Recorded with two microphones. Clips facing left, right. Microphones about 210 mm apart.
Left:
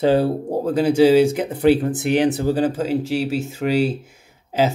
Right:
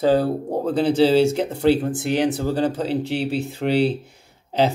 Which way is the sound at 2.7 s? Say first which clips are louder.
Left 2 dB; 45° left (ahead or behind).